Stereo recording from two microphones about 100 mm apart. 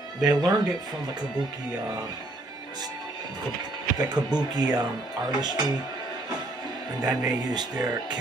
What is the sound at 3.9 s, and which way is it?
Speech, 45° right (ahead or behind).